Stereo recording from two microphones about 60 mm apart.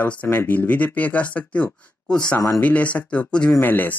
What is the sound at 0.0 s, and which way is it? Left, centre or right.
Speech, left.